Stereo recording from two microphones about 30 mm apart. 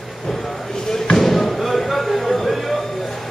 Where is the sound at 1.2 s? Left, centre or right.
Centre.